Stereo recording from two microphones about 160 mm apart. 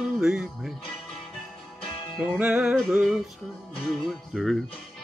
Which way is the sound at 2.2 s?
5° right (ahead or behind).